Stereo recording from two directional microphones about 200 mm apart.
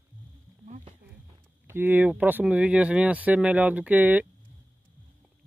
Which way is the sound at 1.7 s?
10° right (ahead or behind).